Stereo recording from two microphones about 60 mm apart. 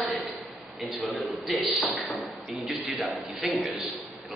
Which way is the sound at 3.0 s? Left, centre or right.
Centre.